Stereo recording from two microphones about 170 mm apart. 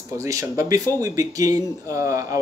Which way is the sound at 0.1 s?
20° right (ahead or behind).